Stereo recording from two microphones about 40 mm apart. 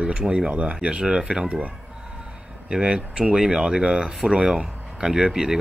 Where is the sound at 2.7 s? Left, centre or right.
Right.